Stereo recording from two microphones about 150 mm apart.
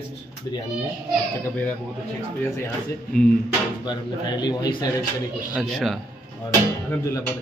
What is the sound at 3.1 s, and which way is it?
Speech, 5° left (ahead or behind).